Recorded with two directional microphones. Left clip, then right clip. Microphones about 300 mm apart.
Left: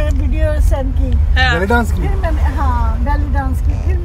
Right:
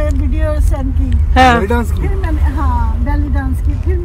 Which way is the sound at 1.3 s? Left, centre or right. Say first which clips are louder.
Right 7 dB; centre.